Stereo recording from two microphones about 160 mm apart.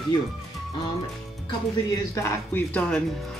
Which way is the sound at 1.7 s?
20° left (ahead or behind).